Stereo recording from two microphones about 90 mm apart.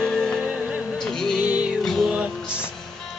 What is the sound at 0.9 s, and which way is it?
Music, 5° left (ahead or behind).